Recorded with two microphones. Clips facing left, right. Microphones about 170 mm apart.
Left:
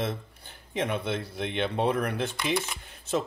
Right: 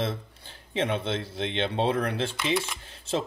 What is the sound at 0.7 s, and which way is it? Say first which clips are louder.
Speech: right 1 dB; 25° right (ahead or behind).